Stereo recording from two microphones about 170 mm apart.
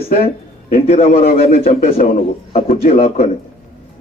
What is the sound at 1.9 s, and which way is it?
Speech, 60° left (ahead or behind).